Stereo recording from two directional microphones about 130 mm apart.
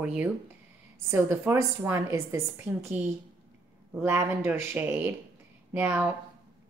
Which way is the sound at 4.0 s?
15° right (ahead or behind).